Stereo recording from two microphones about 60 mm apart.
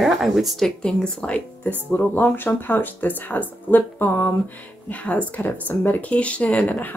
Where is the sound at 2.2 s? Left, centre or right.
Left.